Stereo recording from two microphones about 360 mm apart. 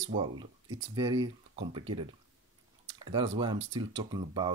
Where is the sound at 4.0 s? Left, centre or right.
Centre.